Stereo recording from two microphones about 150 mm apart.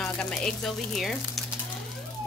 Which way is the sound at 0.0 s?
5° left (ahead or behind).